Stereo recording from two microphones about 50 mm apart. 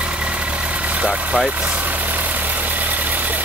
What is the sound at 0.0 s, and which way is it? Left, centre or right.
Vehicle, right.